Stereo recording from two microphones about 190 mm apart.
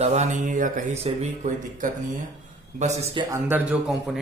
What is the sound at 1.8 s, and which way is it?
Speech, 45° right (ahead or behind).